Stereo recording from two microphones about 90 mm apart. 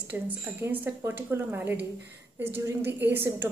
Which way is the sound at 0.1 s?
20° right (ahead or behind).